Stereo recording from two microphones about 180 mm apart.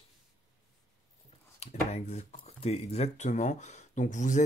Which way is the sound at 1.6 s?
40° left (ahead or behind).